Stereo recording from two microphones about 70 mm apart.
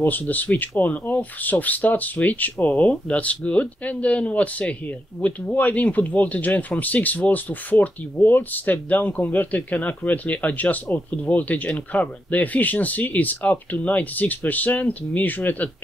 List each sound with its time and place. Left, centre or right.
0.0 s speech: left